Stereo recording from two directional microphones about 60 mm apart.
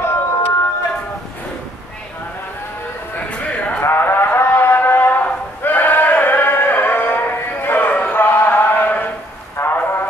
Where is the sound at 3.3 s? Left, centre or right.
Left.